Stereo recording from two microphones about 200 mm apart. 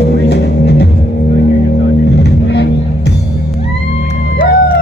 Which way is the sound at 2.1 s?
55° left (ahead or behind).